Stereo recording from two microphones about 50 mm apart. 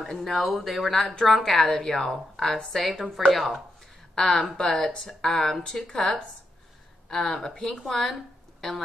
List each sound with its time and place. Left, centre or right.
0.2 s a woman's voice: centre